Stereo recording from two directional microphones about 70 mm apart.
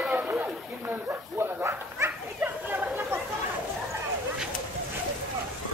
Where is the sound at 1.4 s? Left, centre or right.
Right.